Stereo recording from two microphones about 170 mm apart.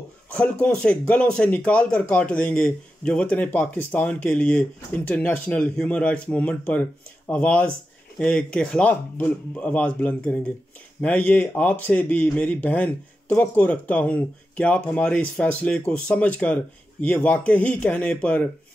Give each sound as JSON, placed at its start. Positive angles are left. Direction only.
{"t": 0.3, "sound": "speech", "side_deg": 10}